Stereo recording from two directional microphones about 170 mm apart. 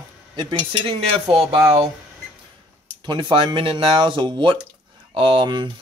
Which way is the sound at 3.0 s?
30° right (ahead or behind).